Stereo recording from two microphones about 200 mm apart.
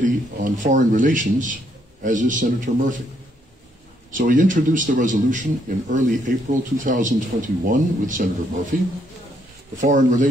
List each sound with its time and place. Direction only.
0.0 s a man's voice: 40° right (ahead or behind)
4.1 s a man's voice: 40° right (ahead or behind)
9.8 s a man's voice: 40° right (ahead or behind)